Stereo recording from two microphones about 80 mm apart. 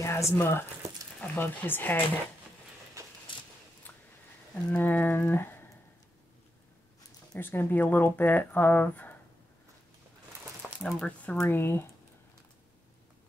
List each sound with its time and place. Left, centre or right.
0.0 s speech: left
3.3 s a sound: left
3.9 s a sound: left
4.6 s speech: left
7.3 s speech: left
10.8 s speech: centre
11.4 s speech: left